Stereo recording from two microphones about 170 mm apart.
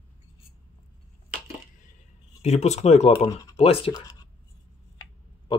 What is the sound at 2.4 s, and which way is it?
Speech, 40° left (ahead or behind).